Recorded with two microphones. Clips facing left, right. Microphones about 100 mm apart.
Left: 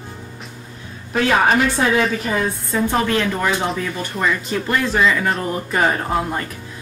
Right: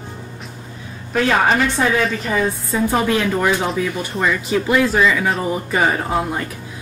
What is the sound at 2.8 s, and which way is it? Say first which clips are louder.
A woman's voice: right 1 dB; 10° right (ahead or behind).